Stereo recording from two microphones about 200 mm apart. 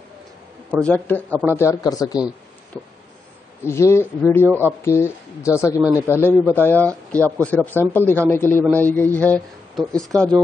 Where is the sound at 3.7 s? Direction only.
15° left (ahead or behind).